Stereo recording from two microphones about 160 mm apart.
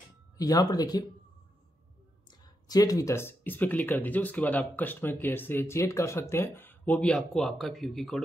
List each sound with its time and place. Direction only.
0.4 s speech: 25° left (ahead or behind)
2.4 s speech: 25° left (ahead or behind); by 8.2 s centre (ahead or behind)